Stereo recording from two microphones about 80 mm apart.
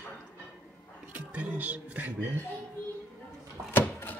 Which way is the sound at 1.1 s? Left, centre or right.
Centre.